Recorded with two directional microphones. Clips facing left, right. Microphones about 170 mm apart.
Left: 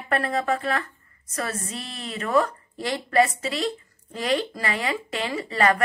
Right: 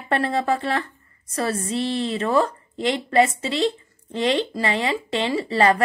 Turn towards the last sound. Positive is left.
turn(degrees=-30)  # may be behind; listen again after turning